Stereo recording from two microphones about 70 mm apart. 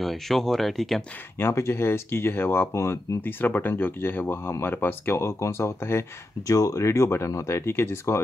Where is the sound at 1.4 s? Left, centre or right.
Left.